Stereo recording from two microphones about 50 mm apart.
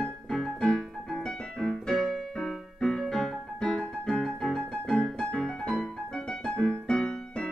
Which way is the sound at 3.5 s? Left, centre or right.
Left.